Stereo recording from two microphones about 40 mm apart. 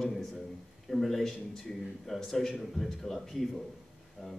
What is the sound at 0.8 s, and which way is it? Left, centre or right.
A man's voice, centre.